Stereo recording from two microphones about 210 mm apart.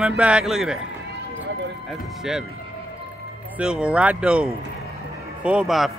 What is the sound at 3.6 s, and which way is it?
Speech, 5° right (ahead or behind).